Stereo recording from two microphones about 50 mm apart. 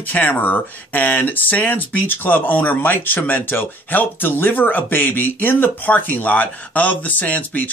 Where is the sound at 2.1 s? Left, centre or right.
Left.